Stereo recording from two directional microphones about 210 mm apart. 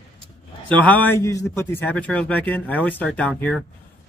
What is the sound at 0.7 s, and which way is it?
A man's voice, 5° left (ahead or behind).